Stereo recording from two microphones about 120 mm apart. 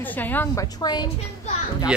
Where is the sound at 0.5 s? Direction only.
35° left (ahead or behind).